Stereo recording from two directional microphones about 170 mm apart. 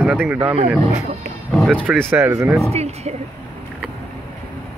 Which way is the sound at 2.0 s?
15° right (ahead or behind).